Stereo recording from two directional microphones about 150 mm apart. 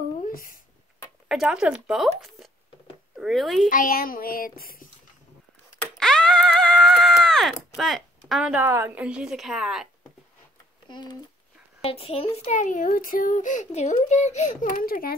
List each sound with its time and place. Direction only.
0.2 s a sound: 70° left (ahead or behind)
1.3 s a woman's voice: 5° right (ahead or behind)
3.6 s child singing: 65° left (ahead or behind)
5.8 s a sound: 5° left (ahead or behind)
7.7 s speech: centre (ahead or behind)
8.6 s a woman's voice: 15° right (ahead or behind)
10.9 s speech: 30° left (ahead or behind)
11.8 s a child's voice: 40° left (ahead or behind); by 15.1 s 75° left (ahead or behind)